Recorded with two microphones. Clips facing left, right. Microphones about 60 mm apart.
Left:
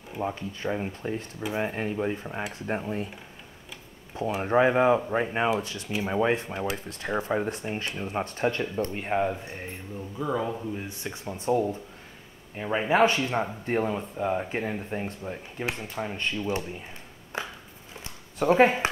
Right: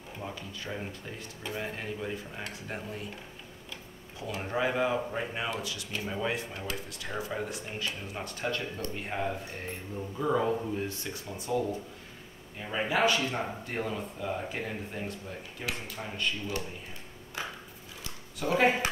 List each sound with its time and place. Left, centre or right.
0.2 s speech: left
4.4 s speech: left
9.9 s speech: centre
10.9 s speech: left
18.0 s a sound: left